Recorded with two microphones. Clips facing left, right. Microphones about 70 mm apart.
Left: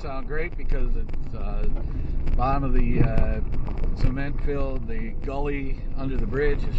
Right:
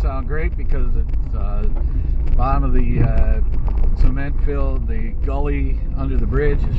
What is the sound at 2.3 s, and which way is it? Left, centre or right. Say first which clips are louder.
Speech: right 3 dB; centre.